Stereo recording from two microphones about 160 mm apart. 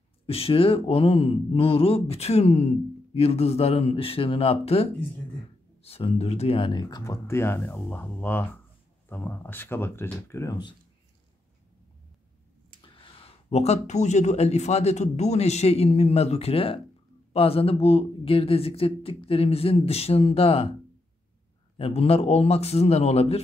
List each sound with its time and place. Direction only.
0.3 s speech: 35° left (ahead or behind)
12.8 s speech: 35° left (ahead or behind)
21.7 s speech: 35° left (ahead or behind)